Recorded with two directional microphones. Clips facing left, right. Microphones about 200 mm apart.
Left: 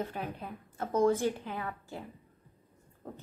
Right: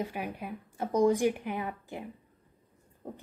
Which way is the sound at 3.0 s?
15° right (ahead or behind).